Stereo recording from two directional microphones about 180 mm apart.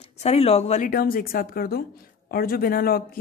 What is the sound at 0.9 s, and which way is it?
A woman's voice, 55° left (ahead or behind).